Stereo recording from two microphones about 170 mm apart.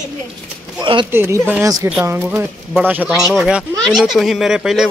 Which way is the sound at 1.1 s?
10° right (ahead or behind).